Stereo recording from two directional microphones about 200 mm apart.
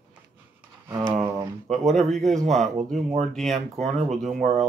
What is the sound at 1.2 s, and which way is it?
Speech, 15° right (ahead or behind).